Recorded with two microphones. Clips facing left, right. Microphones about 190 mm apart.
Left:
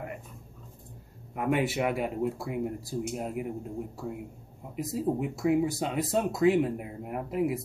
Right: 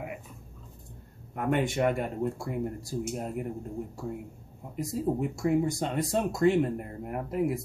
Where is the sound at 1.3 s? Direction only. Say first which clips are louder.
Even; 5° left (ahead or behind).